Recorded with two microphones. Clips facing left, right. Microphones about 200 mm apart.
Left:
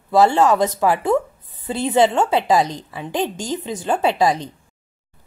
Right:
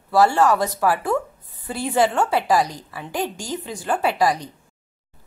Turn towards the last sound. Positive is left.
turn(degrees=25)  # may be behind; listen again after turning